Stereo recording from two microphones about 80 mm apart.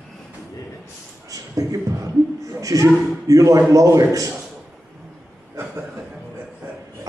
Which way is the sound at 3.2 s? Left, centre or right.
Right.